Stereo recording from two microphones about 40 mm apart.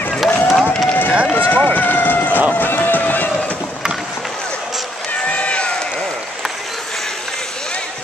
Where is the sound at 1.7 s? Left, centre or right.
Left.